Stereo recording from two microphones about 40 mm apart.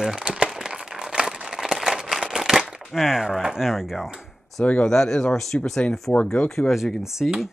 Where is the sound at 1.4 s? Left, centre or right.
Centre.